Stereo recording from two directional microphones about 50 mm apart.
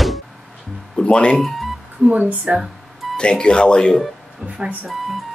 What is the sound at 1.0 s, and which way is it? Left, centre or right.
Speech, left.